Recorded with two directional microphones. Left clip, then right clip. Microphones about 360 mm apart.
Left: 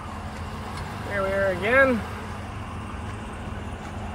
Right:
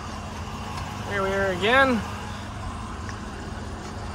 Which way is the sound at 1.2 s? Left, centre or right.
Centre.